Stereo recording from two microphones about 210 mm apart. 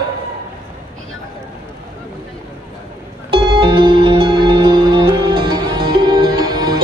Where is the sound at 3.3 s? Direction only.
25° right (ahead or behind).